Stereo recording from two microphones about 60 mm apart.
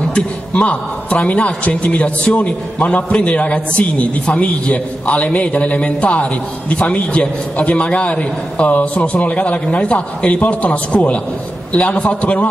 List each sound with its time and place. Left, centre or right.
0.1 s a man's voice: centre